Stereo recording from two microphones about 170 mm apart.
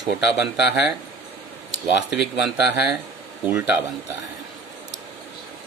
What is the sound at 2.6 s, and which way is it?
Speech, 75° left (ahead or behind).